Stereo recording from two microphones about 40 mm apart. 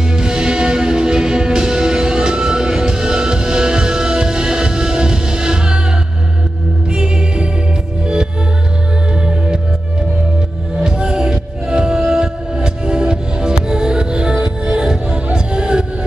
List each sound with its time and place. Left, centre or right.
0.1 s music: centre
6.9 s music: right
9.2 s music: right
10.8 s music: right